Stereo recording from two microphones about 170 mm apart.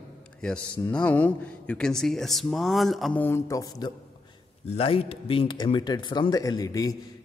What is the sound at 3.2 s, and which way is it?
Speech, 15° left (ahead or behind).